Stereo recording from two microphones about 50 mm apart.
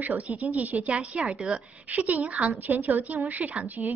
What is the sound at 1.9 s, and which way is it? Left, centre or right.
Speech, right.